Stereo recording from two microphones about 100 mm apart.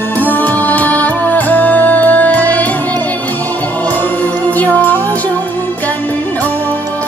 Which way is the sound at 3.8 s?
15° left (ahead or behind).